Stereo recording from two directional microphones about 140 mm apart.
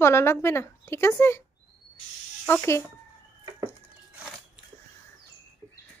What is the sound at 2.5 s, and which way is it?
Speech, 15° left (ahead or behind).